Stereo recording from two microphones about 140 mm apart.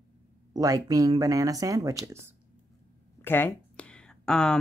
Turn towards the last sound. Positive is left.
turn(degrees=5)  # may be behind; listen again after turning